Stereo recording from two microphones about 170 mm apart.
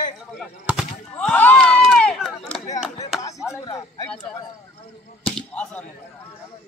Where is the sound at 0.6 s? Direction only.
Centre (ahead or behind).